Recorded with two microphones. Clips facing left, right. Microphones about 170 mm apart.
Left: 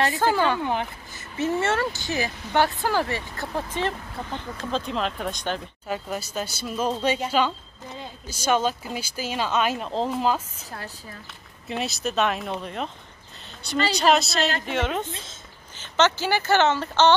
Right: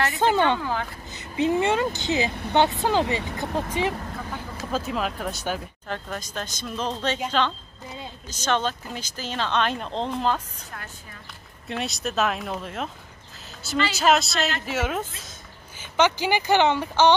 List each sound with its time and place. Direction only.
0.1 s speech: 20° right (ahead or behind)
0.6 s speech: 20° left (ahead or behind)
1.1 s speech: 15° right (ahead or behind)
5.9 s speech: 10° left (ahead or behind)
11.6 s speech: centre (ahead or behind)
13.9 s speech: centre (ahead or behind)